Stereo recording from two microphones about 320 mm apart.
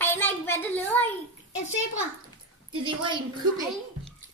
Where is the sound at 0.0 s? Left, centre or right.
Centre.